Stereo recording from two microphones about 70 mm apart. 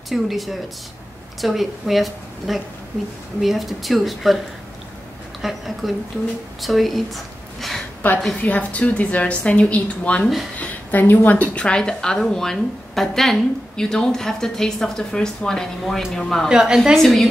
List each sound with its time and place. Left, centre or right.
0.1 s a woman's voice: centre
5.4 s a woman's voice: centre
8.0 s a woman's voice: left
11.5 s a woman's voice: centre
16.4 s a woman's voice: centre
16.9 s a woman's voice: centre